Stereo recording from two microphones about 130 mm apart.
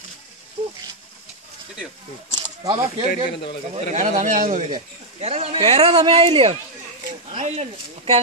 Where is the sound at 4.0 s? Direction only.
70° right (ahead or behind).